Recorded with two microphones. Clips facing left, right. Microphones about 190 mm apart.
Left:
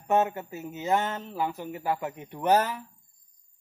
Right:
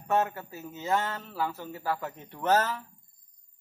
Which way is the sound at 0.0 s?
20° left (ahead or behind).